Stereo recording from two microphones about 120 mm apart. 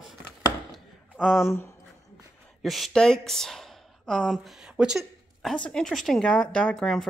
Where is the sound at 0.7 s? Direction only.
5° right (ahead or behind).